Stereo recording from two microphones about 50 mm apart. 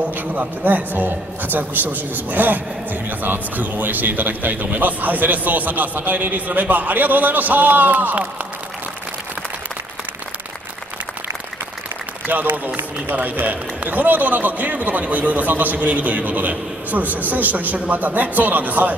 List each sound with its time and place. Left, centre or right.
0.3 s a man's voice: right
12.3 s a man's voice: right